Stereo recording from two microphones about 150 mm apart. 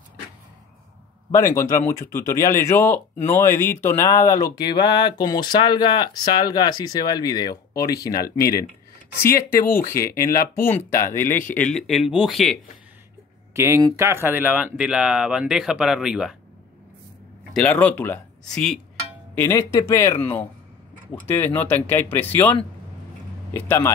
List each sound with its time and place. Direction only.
1.3 s speech: 20° left (ahead or behind); by 12.5 s centre (ahead or behind)
13.5 s speech: 20° right (ahead or behind)
17.6 s speech: 10° left (ahead or behind)
19.3 s speech: 15° left (ahead or behind)